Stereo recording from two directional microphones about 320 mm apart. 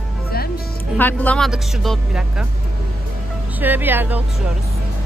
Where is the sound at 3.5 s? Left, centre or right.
Centre.